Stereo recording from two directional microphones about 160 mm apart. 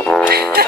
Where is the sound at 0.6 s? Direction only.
70° right (ahead or behind).